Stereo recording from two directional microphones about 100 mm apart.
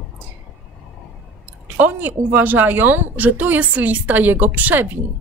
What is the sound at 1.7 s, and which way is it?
A woman's voice, 20° right (ahead or behind).